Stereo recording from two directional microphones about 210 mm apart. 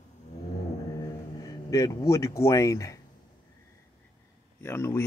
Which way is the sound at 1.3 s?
15° left (ahead or behind).